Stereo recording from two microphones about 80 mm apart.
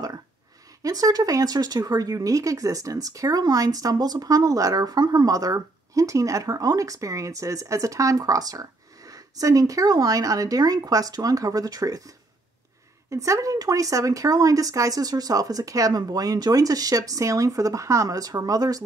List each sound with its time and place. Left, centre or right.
0.8 s speech: right
13.1 s speech: right